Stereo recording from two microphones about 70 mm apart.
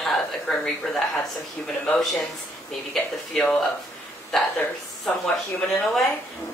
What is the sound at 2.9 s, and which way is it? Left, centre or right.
Speech, centre.